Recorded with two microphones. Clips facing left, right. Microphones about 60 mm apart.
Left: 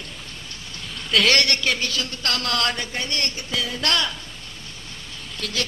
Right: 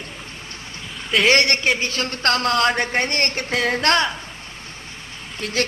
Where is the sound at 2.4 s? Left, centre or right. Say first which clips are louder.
Right 5 dB; right.